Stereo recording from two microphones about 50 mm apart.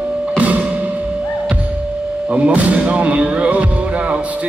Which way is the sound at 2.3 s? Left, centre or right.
Right.